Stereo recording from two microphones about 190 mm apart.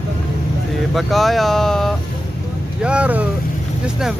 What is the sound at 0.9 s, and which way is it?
Speech, centre (ahead or behind).